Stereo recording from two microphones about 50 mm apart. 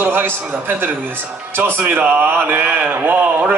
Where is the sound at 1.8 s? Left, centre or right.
Right.